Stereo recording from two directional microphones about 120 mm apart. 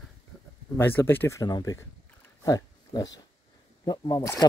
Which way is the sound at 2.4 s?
30° left (ahead or behind).